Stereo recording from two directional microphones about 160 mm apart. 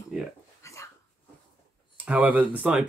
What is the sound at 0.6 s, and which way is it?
Dog, 20° left (ahead or behind).